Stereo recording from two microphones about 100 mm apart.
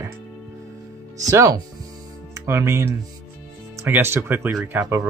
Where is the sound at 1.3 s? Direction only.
35° right (ahead or behind).